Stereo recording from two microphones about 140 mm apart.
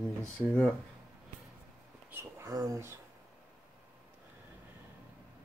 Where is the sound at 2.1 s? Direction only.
25° right (ahead or behind).